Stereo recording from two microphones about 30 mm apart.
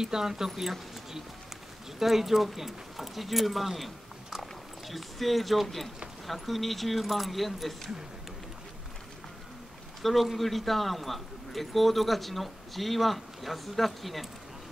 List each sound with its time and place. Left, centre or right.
0.0 s a man's voice: centre
10.0 s a man's voice: centre